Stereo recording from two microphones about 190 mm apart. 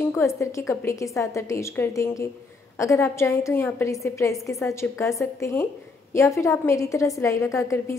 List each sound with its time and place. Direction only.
0.0 s a woman's voice: 15° left (ahead or behind)